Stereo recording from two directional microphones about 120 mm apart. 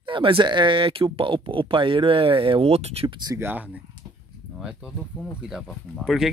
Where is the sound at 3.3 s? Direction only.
15° right (ahead or behind).